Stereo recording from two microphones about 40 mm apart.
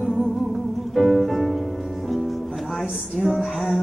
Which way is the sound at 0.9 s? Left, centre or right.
Centre.